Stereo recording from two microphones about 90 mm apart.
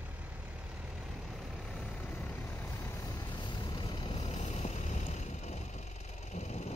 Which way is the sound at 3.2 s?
60° left (ahead or behind).